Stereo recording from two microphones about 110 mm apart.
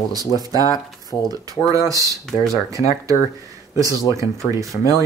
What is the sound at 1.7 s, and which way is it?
Speech, 30° right (ahead or behind).